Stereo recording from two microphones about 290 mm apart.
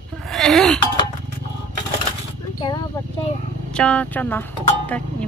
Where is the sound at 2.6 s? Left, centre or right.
Centre.